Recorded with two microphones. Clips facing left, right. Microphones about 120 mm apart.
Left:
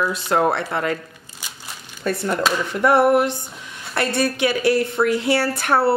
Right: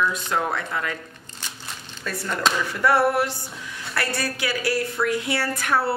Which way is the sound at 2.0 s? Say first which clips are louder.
Left 4 dB; 25° left (ahead or behind).